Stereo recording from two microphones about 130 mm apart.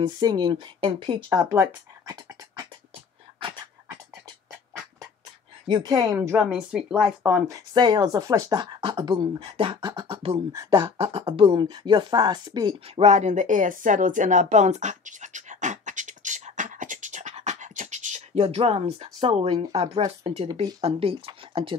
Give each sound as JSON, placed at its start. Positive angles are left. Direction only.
{"t": 0.0, "sound": "speech", "side_deg": -30}
{"t": 1.3, "sound": "speech", "side_deg": -20}
{"t": 3.3, "sound": "dog", "side_deg": -40}
{"t": 5.7, "sound": "speech", "side_deg": -30}
{"t": 6.3, "sound": "speech", "side_deg": -5}
{"t": 7.4, "sound": "speech", "side_deg": -30}
{"t": 10.5, "sound": "speech", "side_deg": -30}
{"t": 11.0, "sound": "speech", "side_deg": -45}
{"t": 12.8, "sound": "a sound", "side_deg": -55}
{"t": 20.8, "sound": "speech", "side_deg": -45}